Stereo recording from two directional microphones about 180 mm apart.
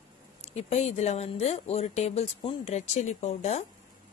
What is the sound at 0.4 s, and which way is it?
Speech, 35° left (ahead or behind).